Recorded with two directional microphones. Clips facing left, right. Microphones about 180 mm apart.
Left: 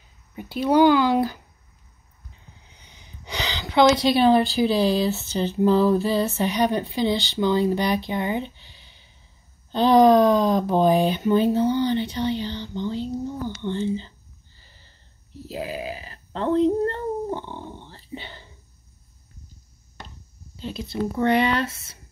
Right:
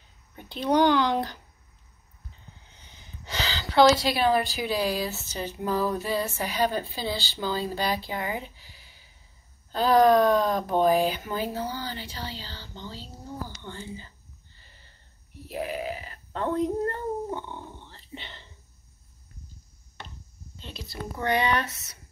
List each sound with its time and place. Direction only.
0.4 s speech: 5° left (ahead or behind)
4.0 s speech: 25° left (ahead or behind)
10.2 s speech: centre (ahead or behind)
10.8 s speech: 25° left (ahead or behind)
14.7 s wheeze: 30° left (ahead or behind)
15.4 s speech: 25° left (ahead or behind)
20.5 s speech: 5° left (ahead or behind)
20.9 s speech: 25° left (ahead or behind)